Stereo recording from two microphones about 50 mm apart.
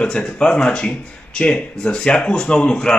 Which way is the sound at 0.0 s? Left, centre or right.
Left.